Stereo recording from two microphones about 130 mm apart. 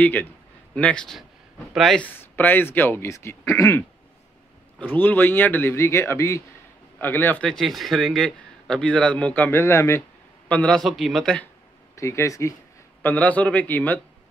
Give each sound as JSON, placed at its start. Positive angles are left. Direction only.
{"t": 0.0, "sound": "a man's voice", "side_deg": 15}
{"t": 2.0, "sound": "a man's voice", "side_deg": 15}
{"t": 4.9, "sound": "a man's voice", "side_deg": 15}
{"t": 10.5, "sound": "speech", "side_deg": 5}
{"t": 11.9, "sound": "speech", "side_deg": 25}
{"t": 13.0, "sound": "a man's voice", "side_deg": 10}